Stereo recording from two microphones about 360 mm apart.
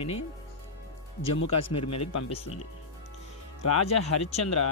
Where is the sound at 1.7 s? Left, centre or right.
Centre.